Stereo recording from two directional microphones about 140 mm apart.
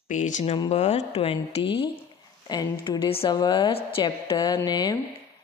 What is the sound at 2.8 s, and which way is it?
A woman's voice, 35° left (ahead or behind).